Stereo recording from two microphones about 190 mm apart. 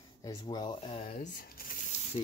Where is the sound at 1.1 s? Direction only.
45° left (ahead or behind).